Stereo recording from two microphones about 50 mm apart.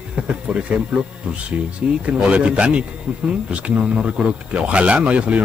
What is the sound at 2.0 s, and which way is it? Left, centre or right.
Speech, right.